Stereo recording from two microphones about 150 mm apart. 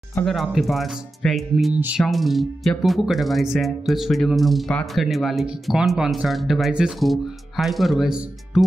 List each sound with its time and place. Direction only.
0.2 s speech: centre (ahead or behind)